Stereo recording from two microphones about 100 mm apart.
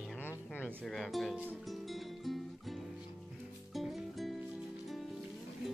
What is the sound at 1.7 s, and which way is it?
Music, centre (ahead or behind).